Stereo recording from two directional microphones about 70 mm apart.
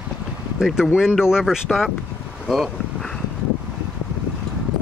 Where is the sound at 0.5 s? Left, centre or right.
Centre.